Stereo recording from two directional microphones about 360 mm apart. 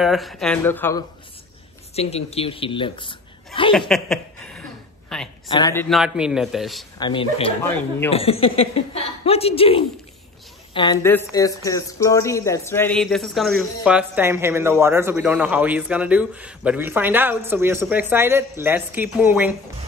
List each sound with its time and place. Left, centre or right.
0.0 s speech: centre
2.0 s a woman's voice: centre
3.9 s a man's voice: centre
7.0 s a woman's voice: centre